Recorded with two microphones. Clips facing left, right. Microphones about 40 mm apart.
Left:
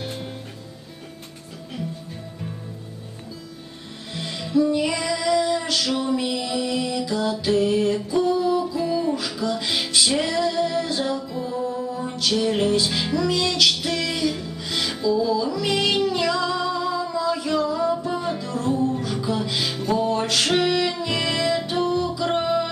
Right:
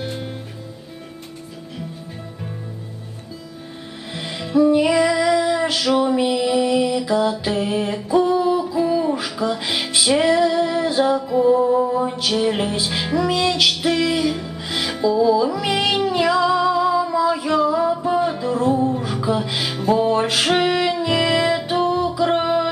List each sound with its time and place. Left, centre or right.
0.0 s music: centre
4.1 s music: centre